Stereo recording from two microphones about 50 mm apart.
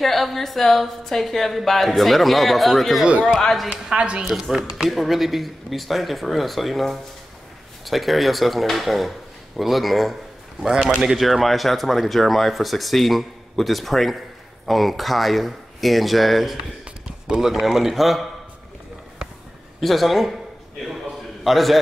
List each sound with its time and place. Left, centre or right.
0.0 s speech: centre
3.8 s speech: centre
10.6 s speech: centre
11.0 s speech: centre
17.6 s speech: centre
19.8 s speech: centre
21.5 s speech: centre